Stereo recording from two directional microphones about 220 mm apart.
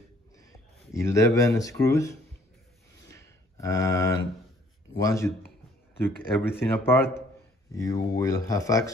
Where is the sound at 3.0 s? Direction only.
15° left (ahead or behind).